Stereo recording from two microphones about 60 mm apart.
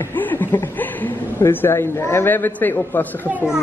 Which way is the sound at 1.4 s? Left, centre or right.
Left.